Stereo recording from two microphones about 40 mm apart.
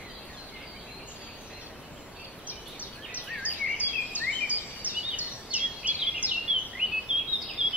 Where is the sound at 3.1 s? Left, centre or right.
Right.